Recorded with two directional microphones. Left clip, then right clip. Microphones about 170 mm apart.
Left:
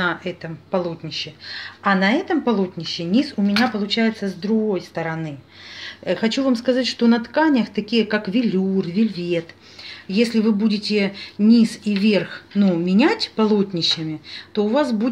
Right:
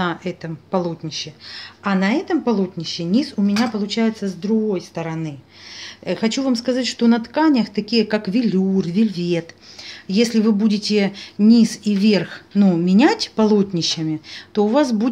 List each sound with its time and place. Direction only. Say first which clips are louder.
0.0 s speech: left 1 dB; 35° right (ahead or behind)